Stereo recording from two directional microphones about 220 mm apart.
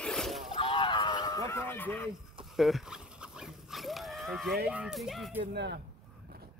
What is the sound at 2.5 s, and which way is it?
Dog, centre (ahead or behind).